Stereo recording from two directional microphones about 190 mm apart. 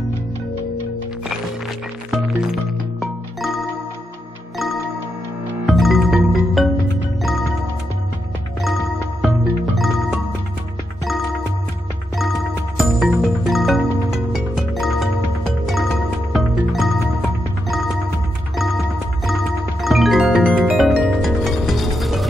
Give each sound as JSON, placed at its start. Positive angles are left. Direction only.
{"t": 2.0, "sound": "music", "side_deg": 0}
{"t": 5.7, "sound": "music", "side_deg": 0}
{"t": 8.6, "sound": "music", "side_deg": 0}
{"t": 12.2, "sound": "music", "side_deg": 0}
{"t": 19.2, "sound": "music", "side_deg": 0}